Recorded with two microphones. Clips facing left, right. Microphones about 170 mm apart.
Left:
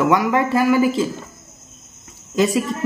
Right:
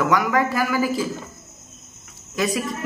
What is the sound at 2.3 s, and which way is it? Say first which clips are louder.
Speech: left 6 dB; 30° left (ahead or behind).